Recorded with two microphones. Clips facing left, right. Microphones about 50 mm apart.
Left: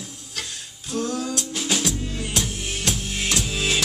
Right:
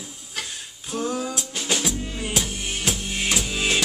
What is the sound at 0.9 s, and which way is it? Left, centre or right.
Music, centre.